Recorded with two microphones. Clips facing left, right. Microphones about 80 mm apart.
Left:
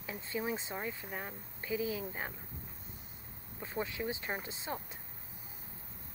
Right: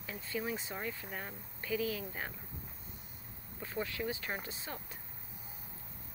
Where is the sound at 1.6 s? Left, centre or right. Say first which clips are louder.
Even; left.